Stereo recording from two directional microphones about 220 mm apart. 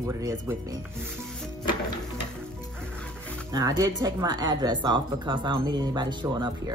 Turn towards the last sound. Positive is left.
turn(degrees=-20)  # may be behind; listen again after turning